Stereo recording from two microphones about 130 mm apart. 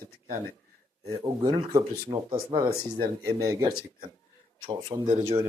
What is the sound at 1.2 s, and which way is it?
Speech, 30° right (ahead or behind).